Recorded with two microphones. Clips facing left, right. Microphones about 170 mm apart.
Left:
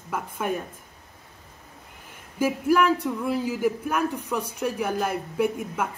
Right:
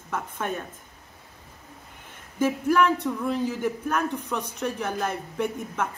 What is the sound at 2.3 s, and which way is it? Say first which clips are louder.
Speech: even; 10° left (ahead or behind).